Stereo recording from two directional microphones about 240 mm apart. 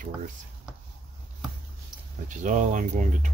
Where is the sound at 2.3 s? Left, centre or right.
Right.